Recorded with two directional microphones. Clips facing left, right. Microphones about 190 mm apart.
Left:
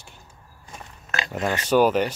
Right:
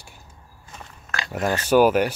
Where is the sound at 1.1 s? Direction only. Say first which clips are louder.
Left 1 dB; 20° left (ahead or behind).